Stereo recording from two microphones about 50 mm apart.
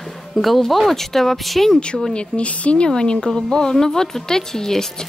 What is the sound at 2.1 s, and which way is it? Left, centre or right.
Speech, left.